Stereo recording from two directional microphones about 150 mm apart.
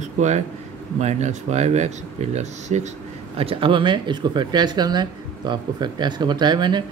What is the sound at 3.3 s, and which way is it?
Speech, 40° right (ahead or behind).